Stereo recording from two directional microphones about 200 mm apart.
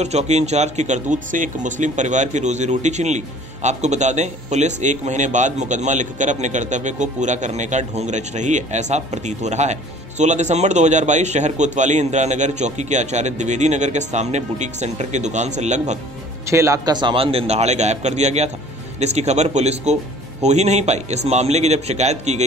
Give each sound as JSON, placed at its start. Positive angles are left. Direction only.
{"t": 0.0, "sound": "speech", "side_deg": -35}
{"t": 16.4, "sound": "a man's voice", "side_deg": -15}